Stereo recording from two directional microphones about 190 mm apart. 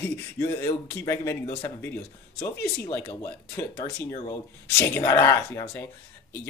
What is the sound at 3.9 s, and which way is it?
A man's voice, 15° left (ahead or behind).